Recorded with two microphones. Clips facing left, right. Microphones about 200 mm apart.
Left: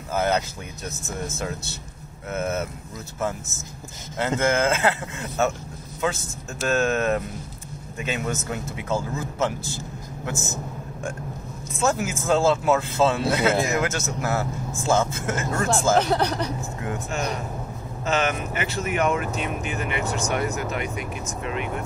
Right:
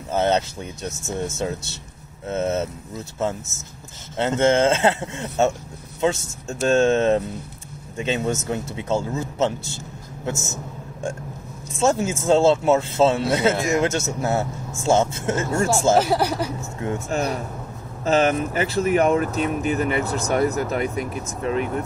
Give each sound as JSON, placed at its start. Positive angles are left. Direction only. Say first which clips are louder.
{"t": 0.1, "sound": "a sound", "louder": "right 3 dB", "side_deg": -25}
{"t": 1.4, "sound": "speech", "louder": "right 4 dB", "side_deg": -25}
{"t": 11.7, "sound": "speech", "louder": "right 4 dB", "side_deg": -25}
{"t": 16.0, "sound": "speech", "louder": "right 2 dB", "side_deg": -5}
{"t": 17.1, "sound": "speech", "louder": "right 4 dB", "side_deg": -40}